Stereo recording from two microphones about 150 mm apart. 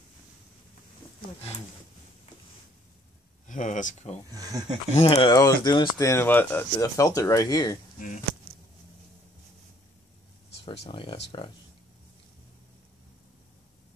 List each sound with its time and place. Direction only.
3.4 s speech: 55° left (ahead or behind)
4.3 s speech: 25° right (ahead or behind)
5.0 s speech: 30° left (ahead or behind)
5.9 s speech: 20° left (ahead or behind)
10.6 s speech: 35° left (ahead or behind)